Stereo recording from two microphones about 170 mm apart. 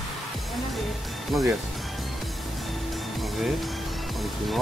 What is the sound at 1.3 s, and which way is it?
Speech, centre (ahead or behind).